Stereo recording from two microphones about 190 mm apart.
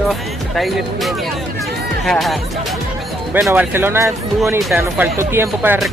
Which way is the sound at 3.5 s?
10° right (ahead or behind).